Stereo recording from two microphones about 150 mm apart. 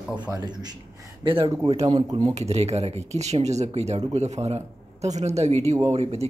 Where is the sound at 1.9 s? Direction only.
25° right (ahead or behind).